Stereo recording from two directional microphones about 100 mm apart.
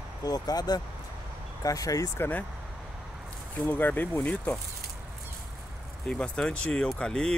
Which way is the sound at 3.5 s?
15° left (ahead or behind).